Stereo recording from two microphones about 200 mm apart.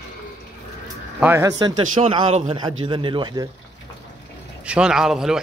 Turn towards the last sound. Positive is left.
turn(degrees=0)  # may be behind; listen again after turning